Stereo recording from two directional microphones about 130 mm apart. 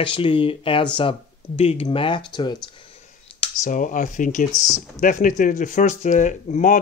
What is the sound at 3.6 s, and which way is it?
Speech, 90° left.